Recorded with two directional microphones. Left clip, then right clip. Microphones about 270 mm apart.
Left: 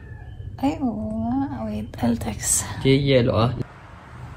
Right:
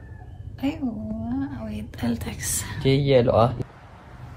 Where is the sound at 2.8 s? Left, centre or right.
Right.